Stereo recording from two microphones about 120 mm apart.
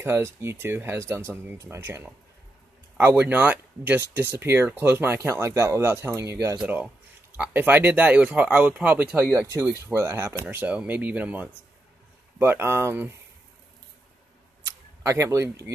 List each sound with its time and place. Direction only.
0.0 s speech: 20° right (ahead or behind)
6.6 s speech: 15° right (ahead or behind)
14.6 s camera: 25° right (ahead or behind)